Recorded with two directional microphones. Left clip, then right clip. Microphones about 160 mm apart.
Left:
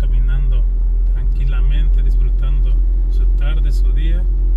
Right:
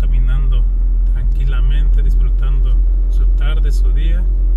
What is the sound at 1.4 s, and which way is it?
Vehicle, 30° right (ahead or behind).